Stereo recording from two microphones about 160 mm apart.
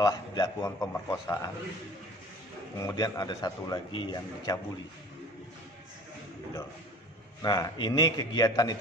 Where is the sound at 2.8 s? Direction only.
20° left (ahead or behind).